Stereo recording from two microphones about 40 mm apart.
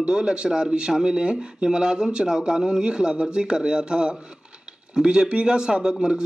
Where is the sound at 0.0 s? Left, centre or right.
Right.